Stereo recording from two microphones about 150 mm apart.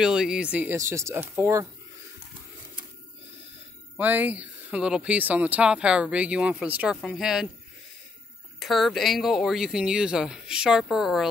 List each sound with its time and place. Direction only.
0.0 s speech: 5° right (ahead or behind); by 1.7 s 20° right (ahead or behind)
4.0 s speech: 10° right (ahead or behind)
8.5 s speech: centre (ahead or behind)